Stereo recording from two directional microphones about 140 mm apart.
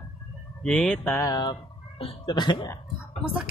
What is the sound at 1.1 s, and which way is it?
Speech, 25° left (ahead or behind).